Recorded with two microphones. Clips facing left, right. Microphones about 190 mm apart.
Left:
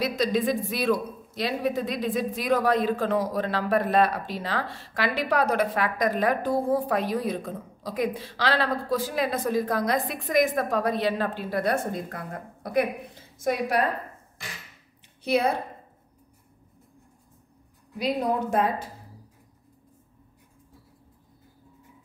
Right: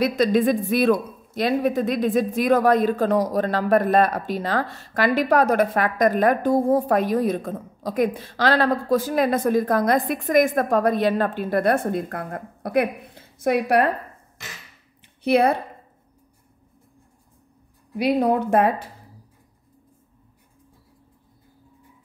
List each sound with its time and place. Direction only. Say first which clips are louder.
0.0 s speech: right 6 dB; 55° right (ahead or behind)
15.2 s a woman's voice: right 6 dB; 60° right (ahead or behind)
17.9 s a woman's voice: right 6 dB; 65° right (ahead or behind)